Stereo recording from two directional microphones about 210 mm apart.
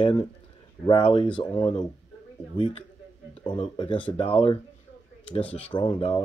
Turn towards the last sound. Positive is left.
turn(degrees=25)  # may be behind; listen again after turning